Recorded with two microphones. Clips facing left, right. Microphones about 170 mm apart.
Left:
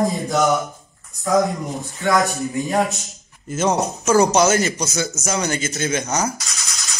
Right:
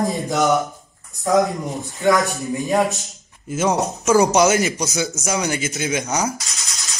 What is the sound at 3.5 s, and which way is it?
Speech, 10° right (ahead or behind).